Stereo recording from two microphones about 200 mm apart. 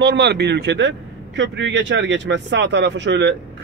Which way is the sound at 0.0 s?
60° right (ahead or behind).